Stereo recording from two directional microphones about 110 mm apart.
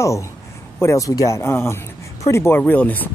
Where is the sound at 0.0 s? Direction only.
25° left (ahead or behind).